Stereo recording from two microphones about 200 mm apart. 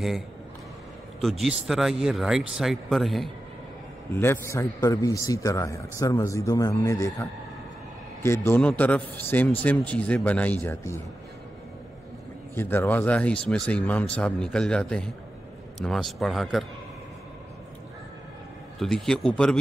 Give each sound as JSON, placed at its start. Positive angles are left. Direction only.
{"t": 1.7, "sound": "speech", "side_deg": 0}
{"t": 4.1, "sound": "a man's voice", "side_deg": 10}
{"t": 12.5, "sound": "a man's voice", "side_deg": 10}
{"t": 18.8, "sound": "speech", "side_deg": 0}